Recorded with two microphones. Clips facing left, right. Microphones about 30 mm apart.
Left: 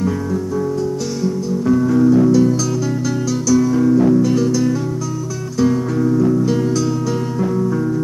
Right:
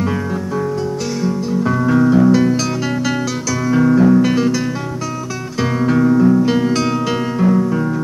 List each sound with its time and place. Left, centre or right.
1.2 s music: right
5.6 s music: right